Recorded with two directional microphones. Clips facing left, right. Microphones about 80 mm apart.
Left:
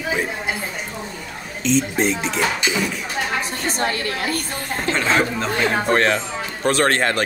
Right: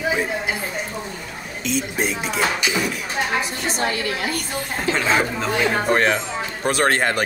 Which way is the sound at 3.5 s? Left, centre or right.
Left.